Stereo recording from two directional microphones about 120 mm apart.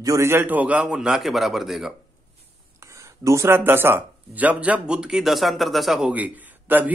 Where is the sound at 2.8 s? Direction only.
25° right (ahead or behind).